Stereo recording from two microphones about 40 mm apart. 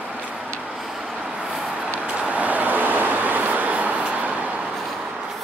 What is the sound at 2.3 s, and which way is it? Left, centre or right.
Vehicle, right.